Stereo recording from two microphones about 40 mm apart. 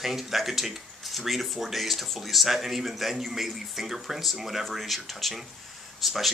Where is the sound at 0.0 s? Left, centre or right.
Centre.